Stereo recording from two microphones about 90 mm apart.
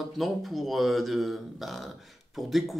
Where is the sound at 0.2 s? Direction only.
Centre (ahead or behind).